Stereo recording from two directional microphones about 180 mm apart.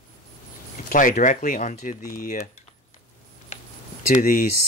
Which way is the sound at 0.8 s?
45° left (ahead or behind).